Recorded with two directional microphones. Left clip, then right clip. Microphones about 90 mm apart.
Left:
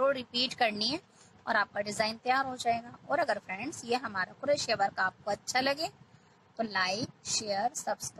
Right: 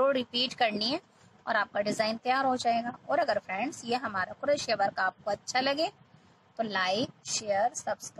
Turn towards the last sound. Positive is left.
turn(degrees=-10)  # may be behind; listen again after turning